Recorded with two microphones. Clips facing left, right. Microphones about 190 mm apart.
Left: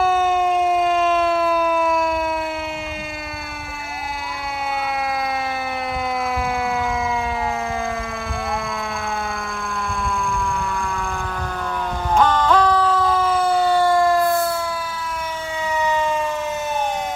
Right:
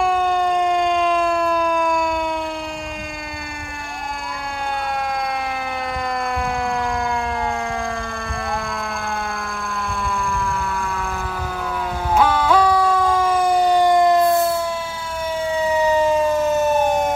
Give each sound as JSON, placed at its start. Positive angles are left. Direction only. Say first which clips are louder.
{"t": 0.0, "sound": "emergency vehicle", "louder": "left 1 dB", "side_deg": 5}
{"t": 12.2, "sound": "siren", "louder": "even", "side_deg": -10}
{"t": 15.6, "sound": "siren", "louder": "right 4 dB", "side_deg": -35}